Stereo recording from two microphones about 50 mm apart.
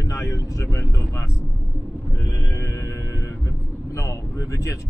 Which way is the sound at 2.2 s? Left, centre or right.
Left.